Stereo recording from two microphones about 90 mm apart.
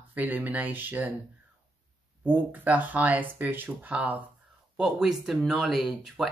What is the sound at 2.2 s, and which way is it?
Speech, 20° right (ahead or behind).